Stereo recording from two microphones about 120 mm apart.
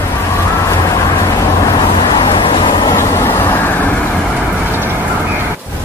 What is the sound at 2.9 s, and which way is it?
Vehicle, 20° left (ahead or behind).